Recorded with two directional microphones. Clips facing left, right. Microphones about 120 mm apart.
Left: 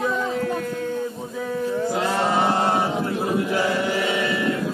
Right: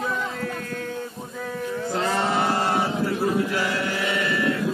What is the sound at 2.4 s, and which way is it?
Chant, 20° left (ahead or behind).